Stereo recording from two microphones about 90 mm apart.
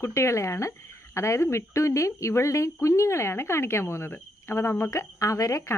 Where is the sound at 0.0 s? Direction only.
30° left (ahead or behind).